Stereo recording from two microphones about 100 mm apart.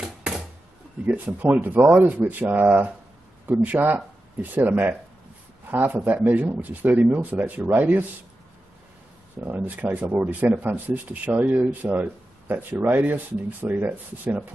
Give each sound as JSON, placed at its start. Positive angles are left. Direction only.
{"t": 0.0, "sound": "a sound", "side_deg": -5}
{"t": 1.0, "sound": "speech", "side_deg": -15}
{"t": 9.4, "sound": "speech", "side_deg": -15}